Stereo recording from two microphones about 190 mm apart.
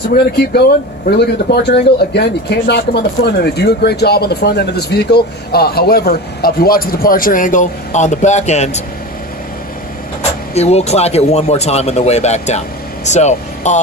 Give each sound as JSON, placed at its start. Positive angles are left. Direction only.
{"t": 1.0, "sound": "speech", "side_deg": 60}
{"t": 10.5, "sound": "speech", "side_deg": 35}